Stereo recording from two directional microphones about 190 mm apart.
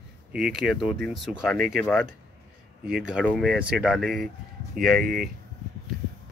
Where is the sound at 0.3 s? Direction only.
5° right (ahead or behind).